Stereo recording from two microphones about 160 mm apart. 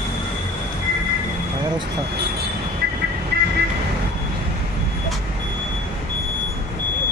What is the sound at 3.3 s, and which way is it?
Vehicle, 90° right.